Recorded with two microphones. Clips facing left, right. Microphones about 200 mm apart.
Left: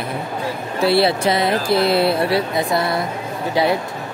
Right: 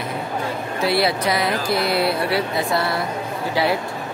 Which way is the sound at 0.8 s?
30° left (ahead or behind).